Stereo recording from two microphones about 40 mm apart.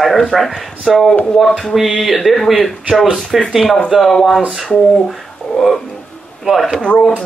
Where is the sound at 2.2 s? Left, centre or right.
Centre.